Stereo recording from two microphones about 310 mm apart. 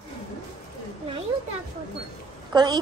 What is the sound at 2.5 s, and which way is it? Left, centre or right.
Speech, centre.